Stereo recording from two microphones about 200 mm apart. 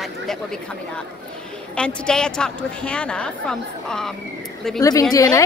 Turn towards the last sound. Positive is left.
turn(degrees=15)  # may be behind; listen again after turning